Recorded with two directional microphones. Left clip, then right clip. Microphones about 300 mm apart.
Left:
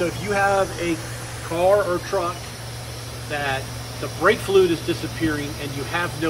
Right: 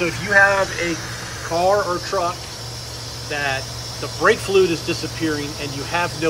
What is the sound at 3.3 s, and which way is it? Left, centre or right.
Speech, centre.